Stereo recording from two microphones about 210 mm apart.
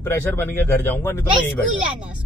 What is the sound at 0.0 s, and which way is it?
A man's voice, 10° left (ahead or behind).